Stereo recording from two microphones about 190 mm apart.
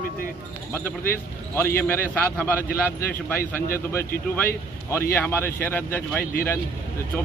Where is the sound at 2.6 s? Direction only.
50° left (ahead or behind).